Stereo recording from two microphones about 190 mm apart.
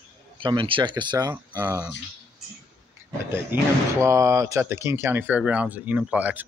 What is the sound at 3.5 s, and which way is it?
Speech, 10° right (ahead or behind).